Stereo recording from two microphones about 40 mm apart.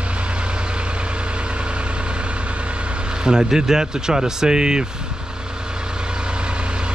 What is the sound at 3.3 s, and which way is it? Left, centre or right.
Speech, centre.